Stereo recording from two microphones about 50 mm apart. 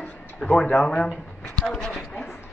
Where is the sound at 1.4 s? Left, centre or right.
Centre.